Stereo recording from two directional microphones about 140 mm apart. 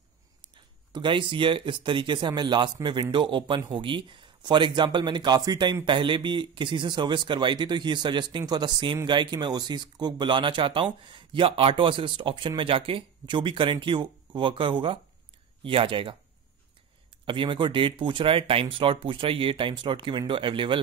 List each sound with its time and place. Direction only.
0.9 s speech: 35° right (ahead or behind)
17.3 s speech: 35° right (ahead or behind)